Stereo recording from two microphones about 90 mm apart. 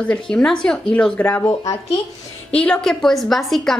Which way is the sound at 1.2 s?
25° left (ahead or behind).